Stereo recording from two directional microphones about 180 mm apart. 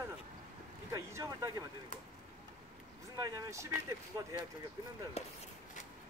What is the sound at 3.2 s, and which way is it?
Speech, 15° right (ahead or behind).